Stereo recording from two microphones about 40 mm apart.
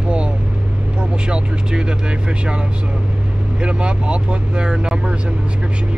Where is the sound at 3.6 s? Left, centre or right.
Right.